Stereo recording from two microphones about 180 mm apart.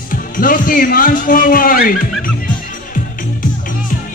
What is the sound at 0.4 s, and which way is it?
Music, 50° left (ahead or behind).